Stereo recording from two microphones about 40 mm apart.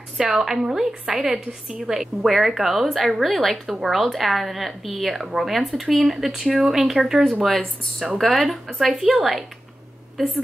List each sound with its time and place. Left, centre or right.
0.3 s a woman's voice: centre